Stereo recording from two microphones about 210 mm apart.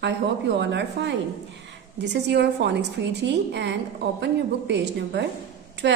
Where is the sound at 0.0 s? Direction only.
55° right (ahead or behind).